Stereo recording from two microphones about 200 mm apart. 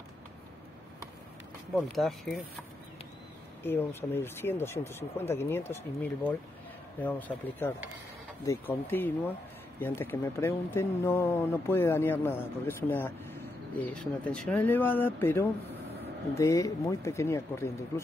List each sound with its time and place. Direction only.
1.8 s speech: centre (ahead or behind)
3.6 s speech: 10° left (ahead or behind)